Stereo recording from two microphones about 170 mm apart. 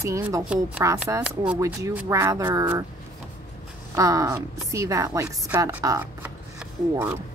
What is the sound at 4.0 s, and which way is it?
Speech, 20° right (ahead or behind).